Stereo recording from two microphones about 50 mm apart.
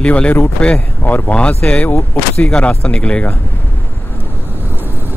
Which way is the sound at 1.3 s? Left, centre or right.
Left.